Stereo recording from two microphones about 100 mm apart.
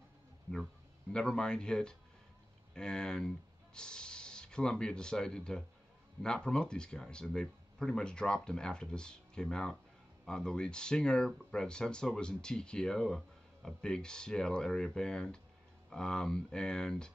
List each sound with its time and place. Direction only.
1.1 s speech: 10° left (ahead or behind)